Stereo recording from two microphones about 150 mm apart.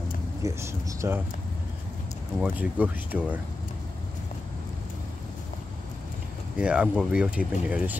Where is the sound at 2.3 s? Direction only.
10° right (ahead or behind).